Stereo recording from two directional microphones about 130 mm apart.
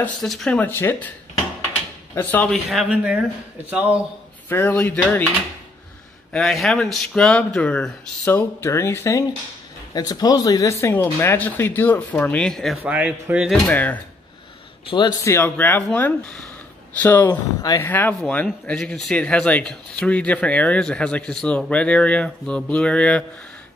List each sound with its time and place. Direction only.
0.2 s speech: centre (ahead or behind); by 1.0 s 15° left (ahead or behind)
2.1 s speech: 15° left (ahead or behind)
2.5 s speech: centre (ahead or behind)
4.5 s speech: 15° left (ahead or behind)
6.3 s speech: centre (ahead or behind)
12.8 s speech: 10° right (ahead or behind)
13.5 s speech: 10° left (ahead or behind)
14.9 s a man's voice: 35° left (ahead or behind)
15.2 s speech: 15° left (ahead or behind)
17.3 s speech: 30° left (ahead or behind)
17.8 s speech: 15° left (ahead or behind)